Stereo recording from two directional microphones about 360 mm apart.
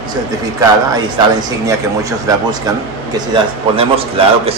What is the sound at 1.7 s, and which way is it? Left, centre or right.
A man's voice, centre.